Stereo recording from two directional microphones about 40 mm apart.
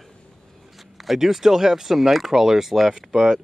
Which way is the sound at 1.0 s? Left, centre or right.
Centre.